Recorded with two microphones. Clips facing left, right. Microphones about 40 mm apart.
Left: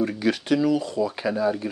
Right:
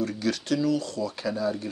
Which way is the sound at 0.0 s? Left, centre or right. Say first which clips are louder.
Left 4 dB; left.